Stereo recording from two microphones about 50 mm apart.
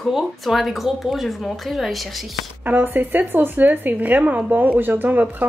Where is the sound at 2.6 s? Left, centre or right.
Right.